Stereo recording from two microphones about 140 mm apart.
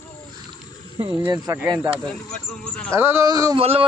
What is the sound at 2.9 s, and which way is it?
Speech, 20° right (ahead or behind).